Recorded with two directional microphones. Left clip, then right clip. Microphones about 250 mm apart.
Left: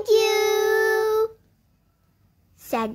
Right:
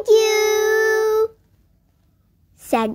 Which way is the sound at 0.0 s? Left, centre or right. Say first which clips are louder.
Right 4 dB; centre.